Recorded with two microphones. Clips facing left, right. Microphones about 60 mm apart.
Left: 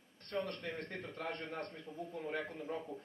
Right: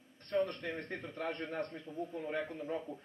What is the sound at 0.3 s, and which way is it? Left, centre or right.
A man's voice, centre.